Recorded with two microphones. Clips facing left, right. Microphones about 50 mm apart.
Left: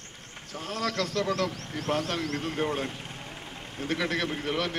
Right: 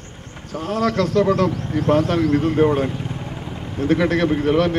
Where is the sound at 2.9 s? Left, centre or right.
Right.